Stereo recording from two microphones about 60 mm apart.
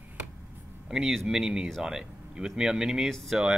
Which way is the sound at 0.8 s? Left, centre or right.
Centre.